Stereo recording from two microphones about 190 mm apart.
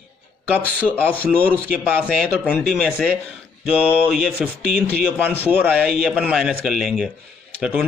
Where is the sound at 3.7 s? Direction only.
5° right (ahead or behind).